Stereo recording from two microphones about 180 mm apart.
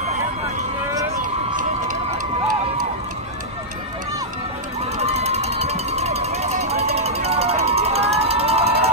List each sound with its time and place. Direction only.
1.6 s run: 45° right (ahead or behind)
5.0 s run: 35° right (ahead or behind)